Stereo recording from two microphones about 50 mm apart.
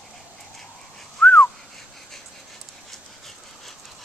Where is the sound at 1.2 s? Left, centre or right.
Left.